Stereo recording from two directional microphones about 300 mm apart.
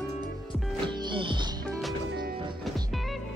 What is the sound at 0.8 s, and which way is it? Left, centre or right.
Music, centre.